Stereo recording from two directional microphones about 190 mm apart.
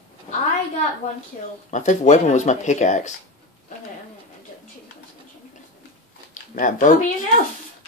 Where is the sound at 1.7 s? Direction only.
40° left (ahead or behind).